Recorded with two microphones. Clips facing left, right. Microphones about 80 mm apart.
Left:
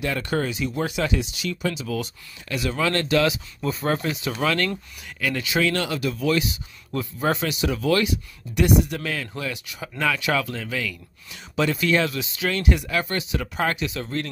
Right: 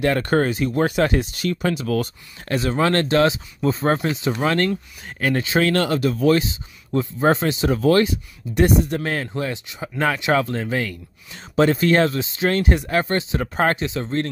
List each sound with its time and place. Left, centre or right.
0.0 s speech: right
6.9 s speech: right
13.8 s speech: right